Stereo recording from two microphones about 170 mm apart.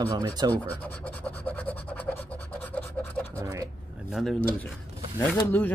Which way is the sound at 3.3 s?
20° right (ahead or behind).